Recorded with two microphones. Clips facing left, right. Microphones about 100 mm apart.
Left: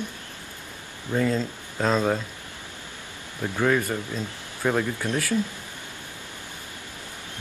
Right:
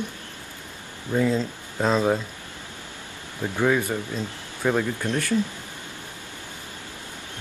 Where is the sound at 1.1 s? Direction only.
5° right (ahead or behind).